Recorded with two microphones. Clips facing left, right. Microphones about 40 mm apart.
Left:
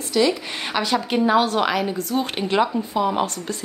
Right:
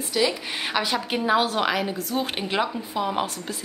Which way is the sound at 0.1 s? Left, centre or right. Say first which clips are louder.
Left 4 dB; centre.